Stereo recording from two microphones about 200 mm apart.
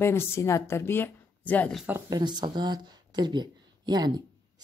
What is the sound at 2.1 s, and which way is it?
Speech, 20° right (ahead or behind).